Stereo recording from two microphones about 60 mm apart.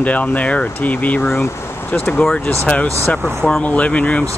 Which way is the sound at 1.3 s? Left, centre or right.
Left.